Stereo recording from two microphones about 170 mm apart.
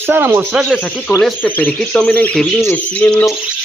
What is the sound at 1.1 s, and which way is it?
Speech, 15° left (ahead or behind).